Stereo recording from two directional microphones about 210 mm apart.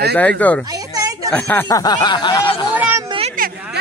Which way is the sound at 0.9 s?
15° right (ahead or behind).